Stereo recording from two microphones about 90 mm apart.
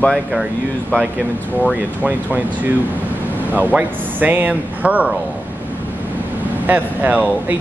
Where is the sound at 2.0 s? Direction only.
15° right (ahead or behind).